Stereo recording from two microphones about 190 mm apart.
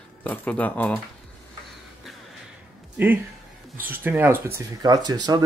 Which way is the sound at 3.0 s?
10° right (ahead or behind).